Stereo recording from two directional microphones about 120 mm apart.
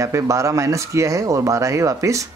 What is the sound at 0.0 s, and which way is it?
Speech, 25° right (ahead or behind).